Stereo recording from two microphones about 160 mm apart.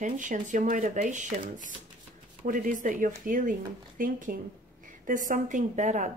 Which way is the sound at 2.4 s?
55° right (ahead or behind).